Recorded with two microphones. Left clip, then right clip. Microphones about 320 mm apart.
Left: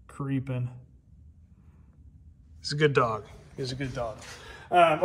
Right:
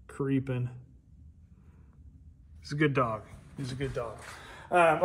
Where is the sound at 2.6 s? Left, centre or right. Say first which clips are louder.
Left 4 dB; centre.